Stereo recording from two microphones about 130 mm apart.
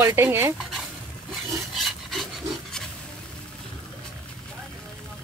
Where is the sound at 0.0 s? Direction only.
20° right (ahead or behind).